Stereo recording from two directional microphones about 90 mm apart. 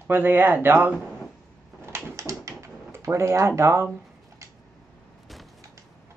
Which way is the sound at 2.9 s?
30° right (ahead or behind).